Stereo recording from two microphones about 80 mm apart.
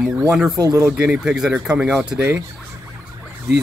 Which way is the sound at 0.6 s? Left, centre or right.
Right.